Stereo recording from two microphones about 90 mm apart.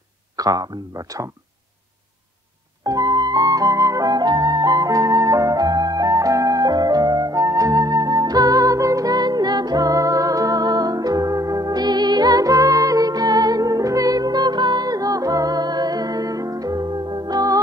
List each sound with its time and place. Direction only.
0.4 s speech: 45° right (ahead or behind)
2.8 s flute: 45° right (ahead or behind)